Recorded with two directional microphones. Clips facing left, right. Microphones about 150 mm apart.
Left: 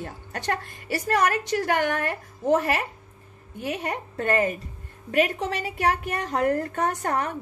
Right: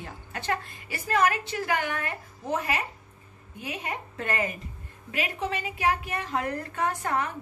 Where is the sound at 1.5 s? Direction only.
60° left (ahead or behind); by 4.5 s 40° left (ahead or behind).